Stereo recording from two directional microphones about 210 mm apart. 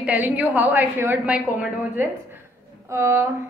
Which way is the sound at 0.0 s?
10° right (ahead or behind).